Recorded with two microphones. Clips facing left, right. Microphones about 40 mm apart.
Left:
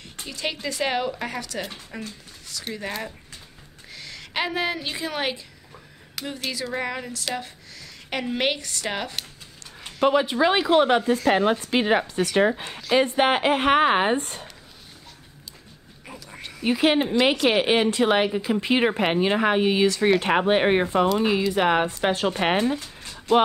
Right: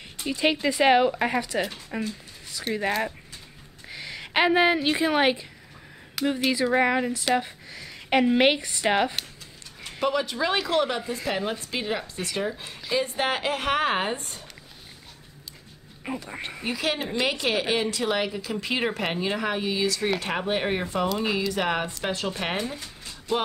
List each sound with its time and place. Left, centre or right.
0.3 s speech: centre
2.7 s speech: centre
3.9 s a woman's voice: centre
10.0 s speech: left
10.9 s a woman's voice: left
14.2 s speech: left
16.1 s speech: right
16.6 s speech: left
21.2 s speech: centre
21.8 s speech: left
22.3 s speech: left
22.8 s a sound: left